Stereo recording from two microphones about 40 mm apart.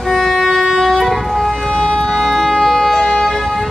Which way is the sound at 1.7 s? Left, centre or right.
Left.